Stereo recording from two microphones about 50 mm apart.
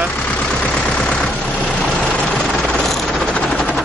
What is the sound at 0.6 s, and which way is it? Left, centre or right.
Vehicle, left.